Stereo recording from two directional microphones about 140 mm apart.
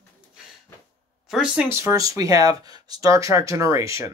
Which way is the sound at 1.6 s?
20° right (ahead or behind).